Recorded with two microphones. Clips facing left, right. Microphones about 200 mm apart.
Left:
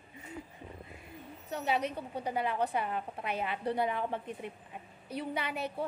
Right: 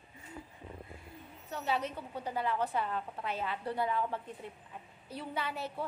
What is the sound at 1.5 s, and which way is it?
A woman's voice, 15° left (ahead or behind).